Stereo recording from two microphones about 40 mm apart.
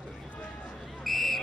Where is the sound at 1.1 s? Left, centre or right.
Centre.